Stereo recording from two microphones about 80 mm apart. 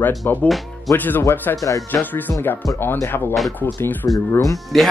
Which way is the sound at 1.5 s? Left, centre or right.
Left.